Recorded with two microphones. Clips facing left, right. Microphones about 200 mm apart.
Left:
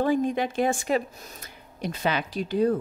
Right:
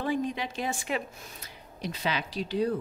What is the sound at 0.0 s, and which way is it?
A woman's voice, 45° left (ahead or behind).